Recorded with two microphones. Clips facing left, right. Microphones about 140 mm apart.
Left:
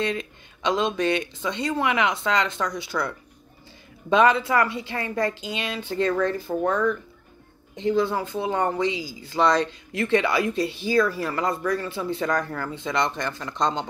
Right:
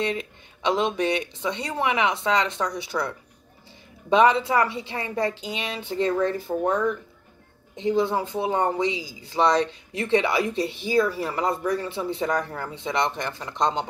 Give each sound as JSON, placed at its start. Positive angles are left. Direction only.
{"t": 0.0, "sound": "speech", "side_deg": -15}
{"t": 4.1, "sound": "speech", "side_deg": -20}
{"t": 7.9, "sound": "speech", "side_deg": -25}